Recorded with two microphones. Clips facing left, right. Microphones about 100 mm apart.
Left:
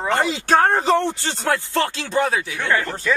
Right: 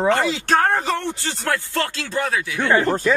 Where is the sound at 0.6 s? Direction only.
20° left (ahead or behind).